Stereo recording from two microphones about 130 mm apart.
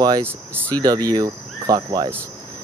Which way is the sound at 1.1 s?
30° right (ahead or behind).